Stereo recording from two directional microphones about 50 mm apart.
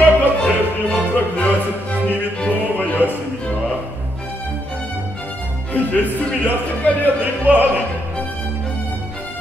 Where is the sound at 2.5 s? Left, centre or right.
Left.